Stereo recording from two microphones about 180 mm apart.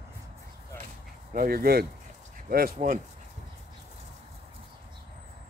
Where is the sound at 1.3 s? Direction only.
55° right (ahead or behind).